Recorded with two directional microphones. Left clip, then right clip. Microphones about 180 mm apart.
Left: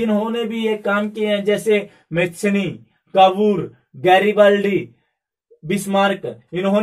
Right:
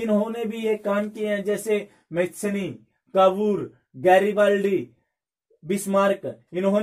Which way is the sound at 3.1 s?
45° right (ahead or behind).